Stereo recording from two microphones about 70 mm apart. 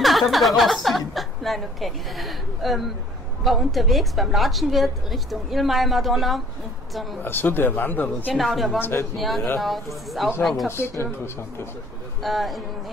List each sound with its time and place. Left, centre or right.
0.0 s a woman's voice: centre
7.2 s speech: left
8.3 s a woman's voice: centre
10.7 s speech: left
12.2 s a woman's voice: centre